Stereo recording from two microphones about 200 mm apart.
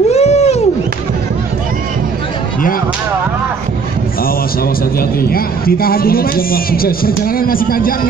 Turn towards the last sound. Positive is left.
turn(degrees=45)  # may be behind; listen again after turning